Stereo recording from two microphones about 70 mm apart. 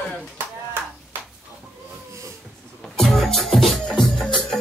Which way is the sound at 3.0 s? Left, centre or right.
Centre.